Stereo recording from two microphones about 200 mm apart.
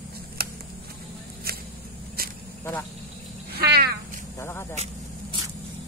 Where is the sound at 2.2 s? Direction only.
50° right (ahead or behind).